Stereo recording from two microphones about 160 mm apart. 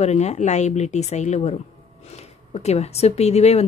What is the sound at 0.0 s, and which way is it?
Speech, 45° left (ahead or behind).